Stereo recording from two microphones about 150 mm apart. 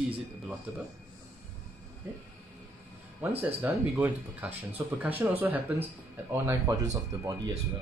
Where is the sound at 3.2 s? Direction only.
10° right (ahead or behind).